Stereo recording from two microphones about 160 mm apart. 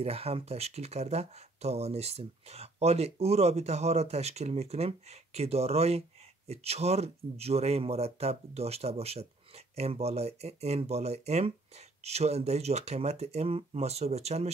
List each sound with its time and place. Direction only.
0.0 s speech: 40° right (ahead or behind)